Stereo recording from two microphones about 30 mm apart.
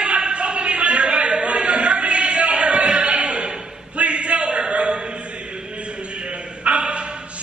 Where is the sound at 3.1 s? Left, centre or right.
Right.